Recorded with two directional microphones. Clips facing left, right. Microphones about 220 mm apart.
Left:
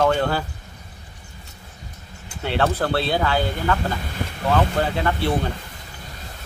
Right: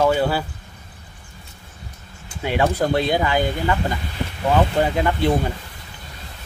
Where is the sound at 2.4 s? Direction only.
10° right (ahead or behind).